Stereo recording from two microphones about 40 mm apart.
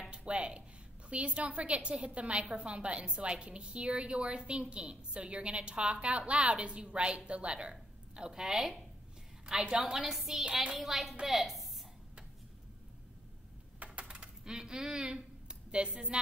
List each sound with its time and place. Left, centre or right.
0.1 s a sound: right
1.1 s a woman's voice: right
7.7 s a woman's voice: centre
13.7 s coin: right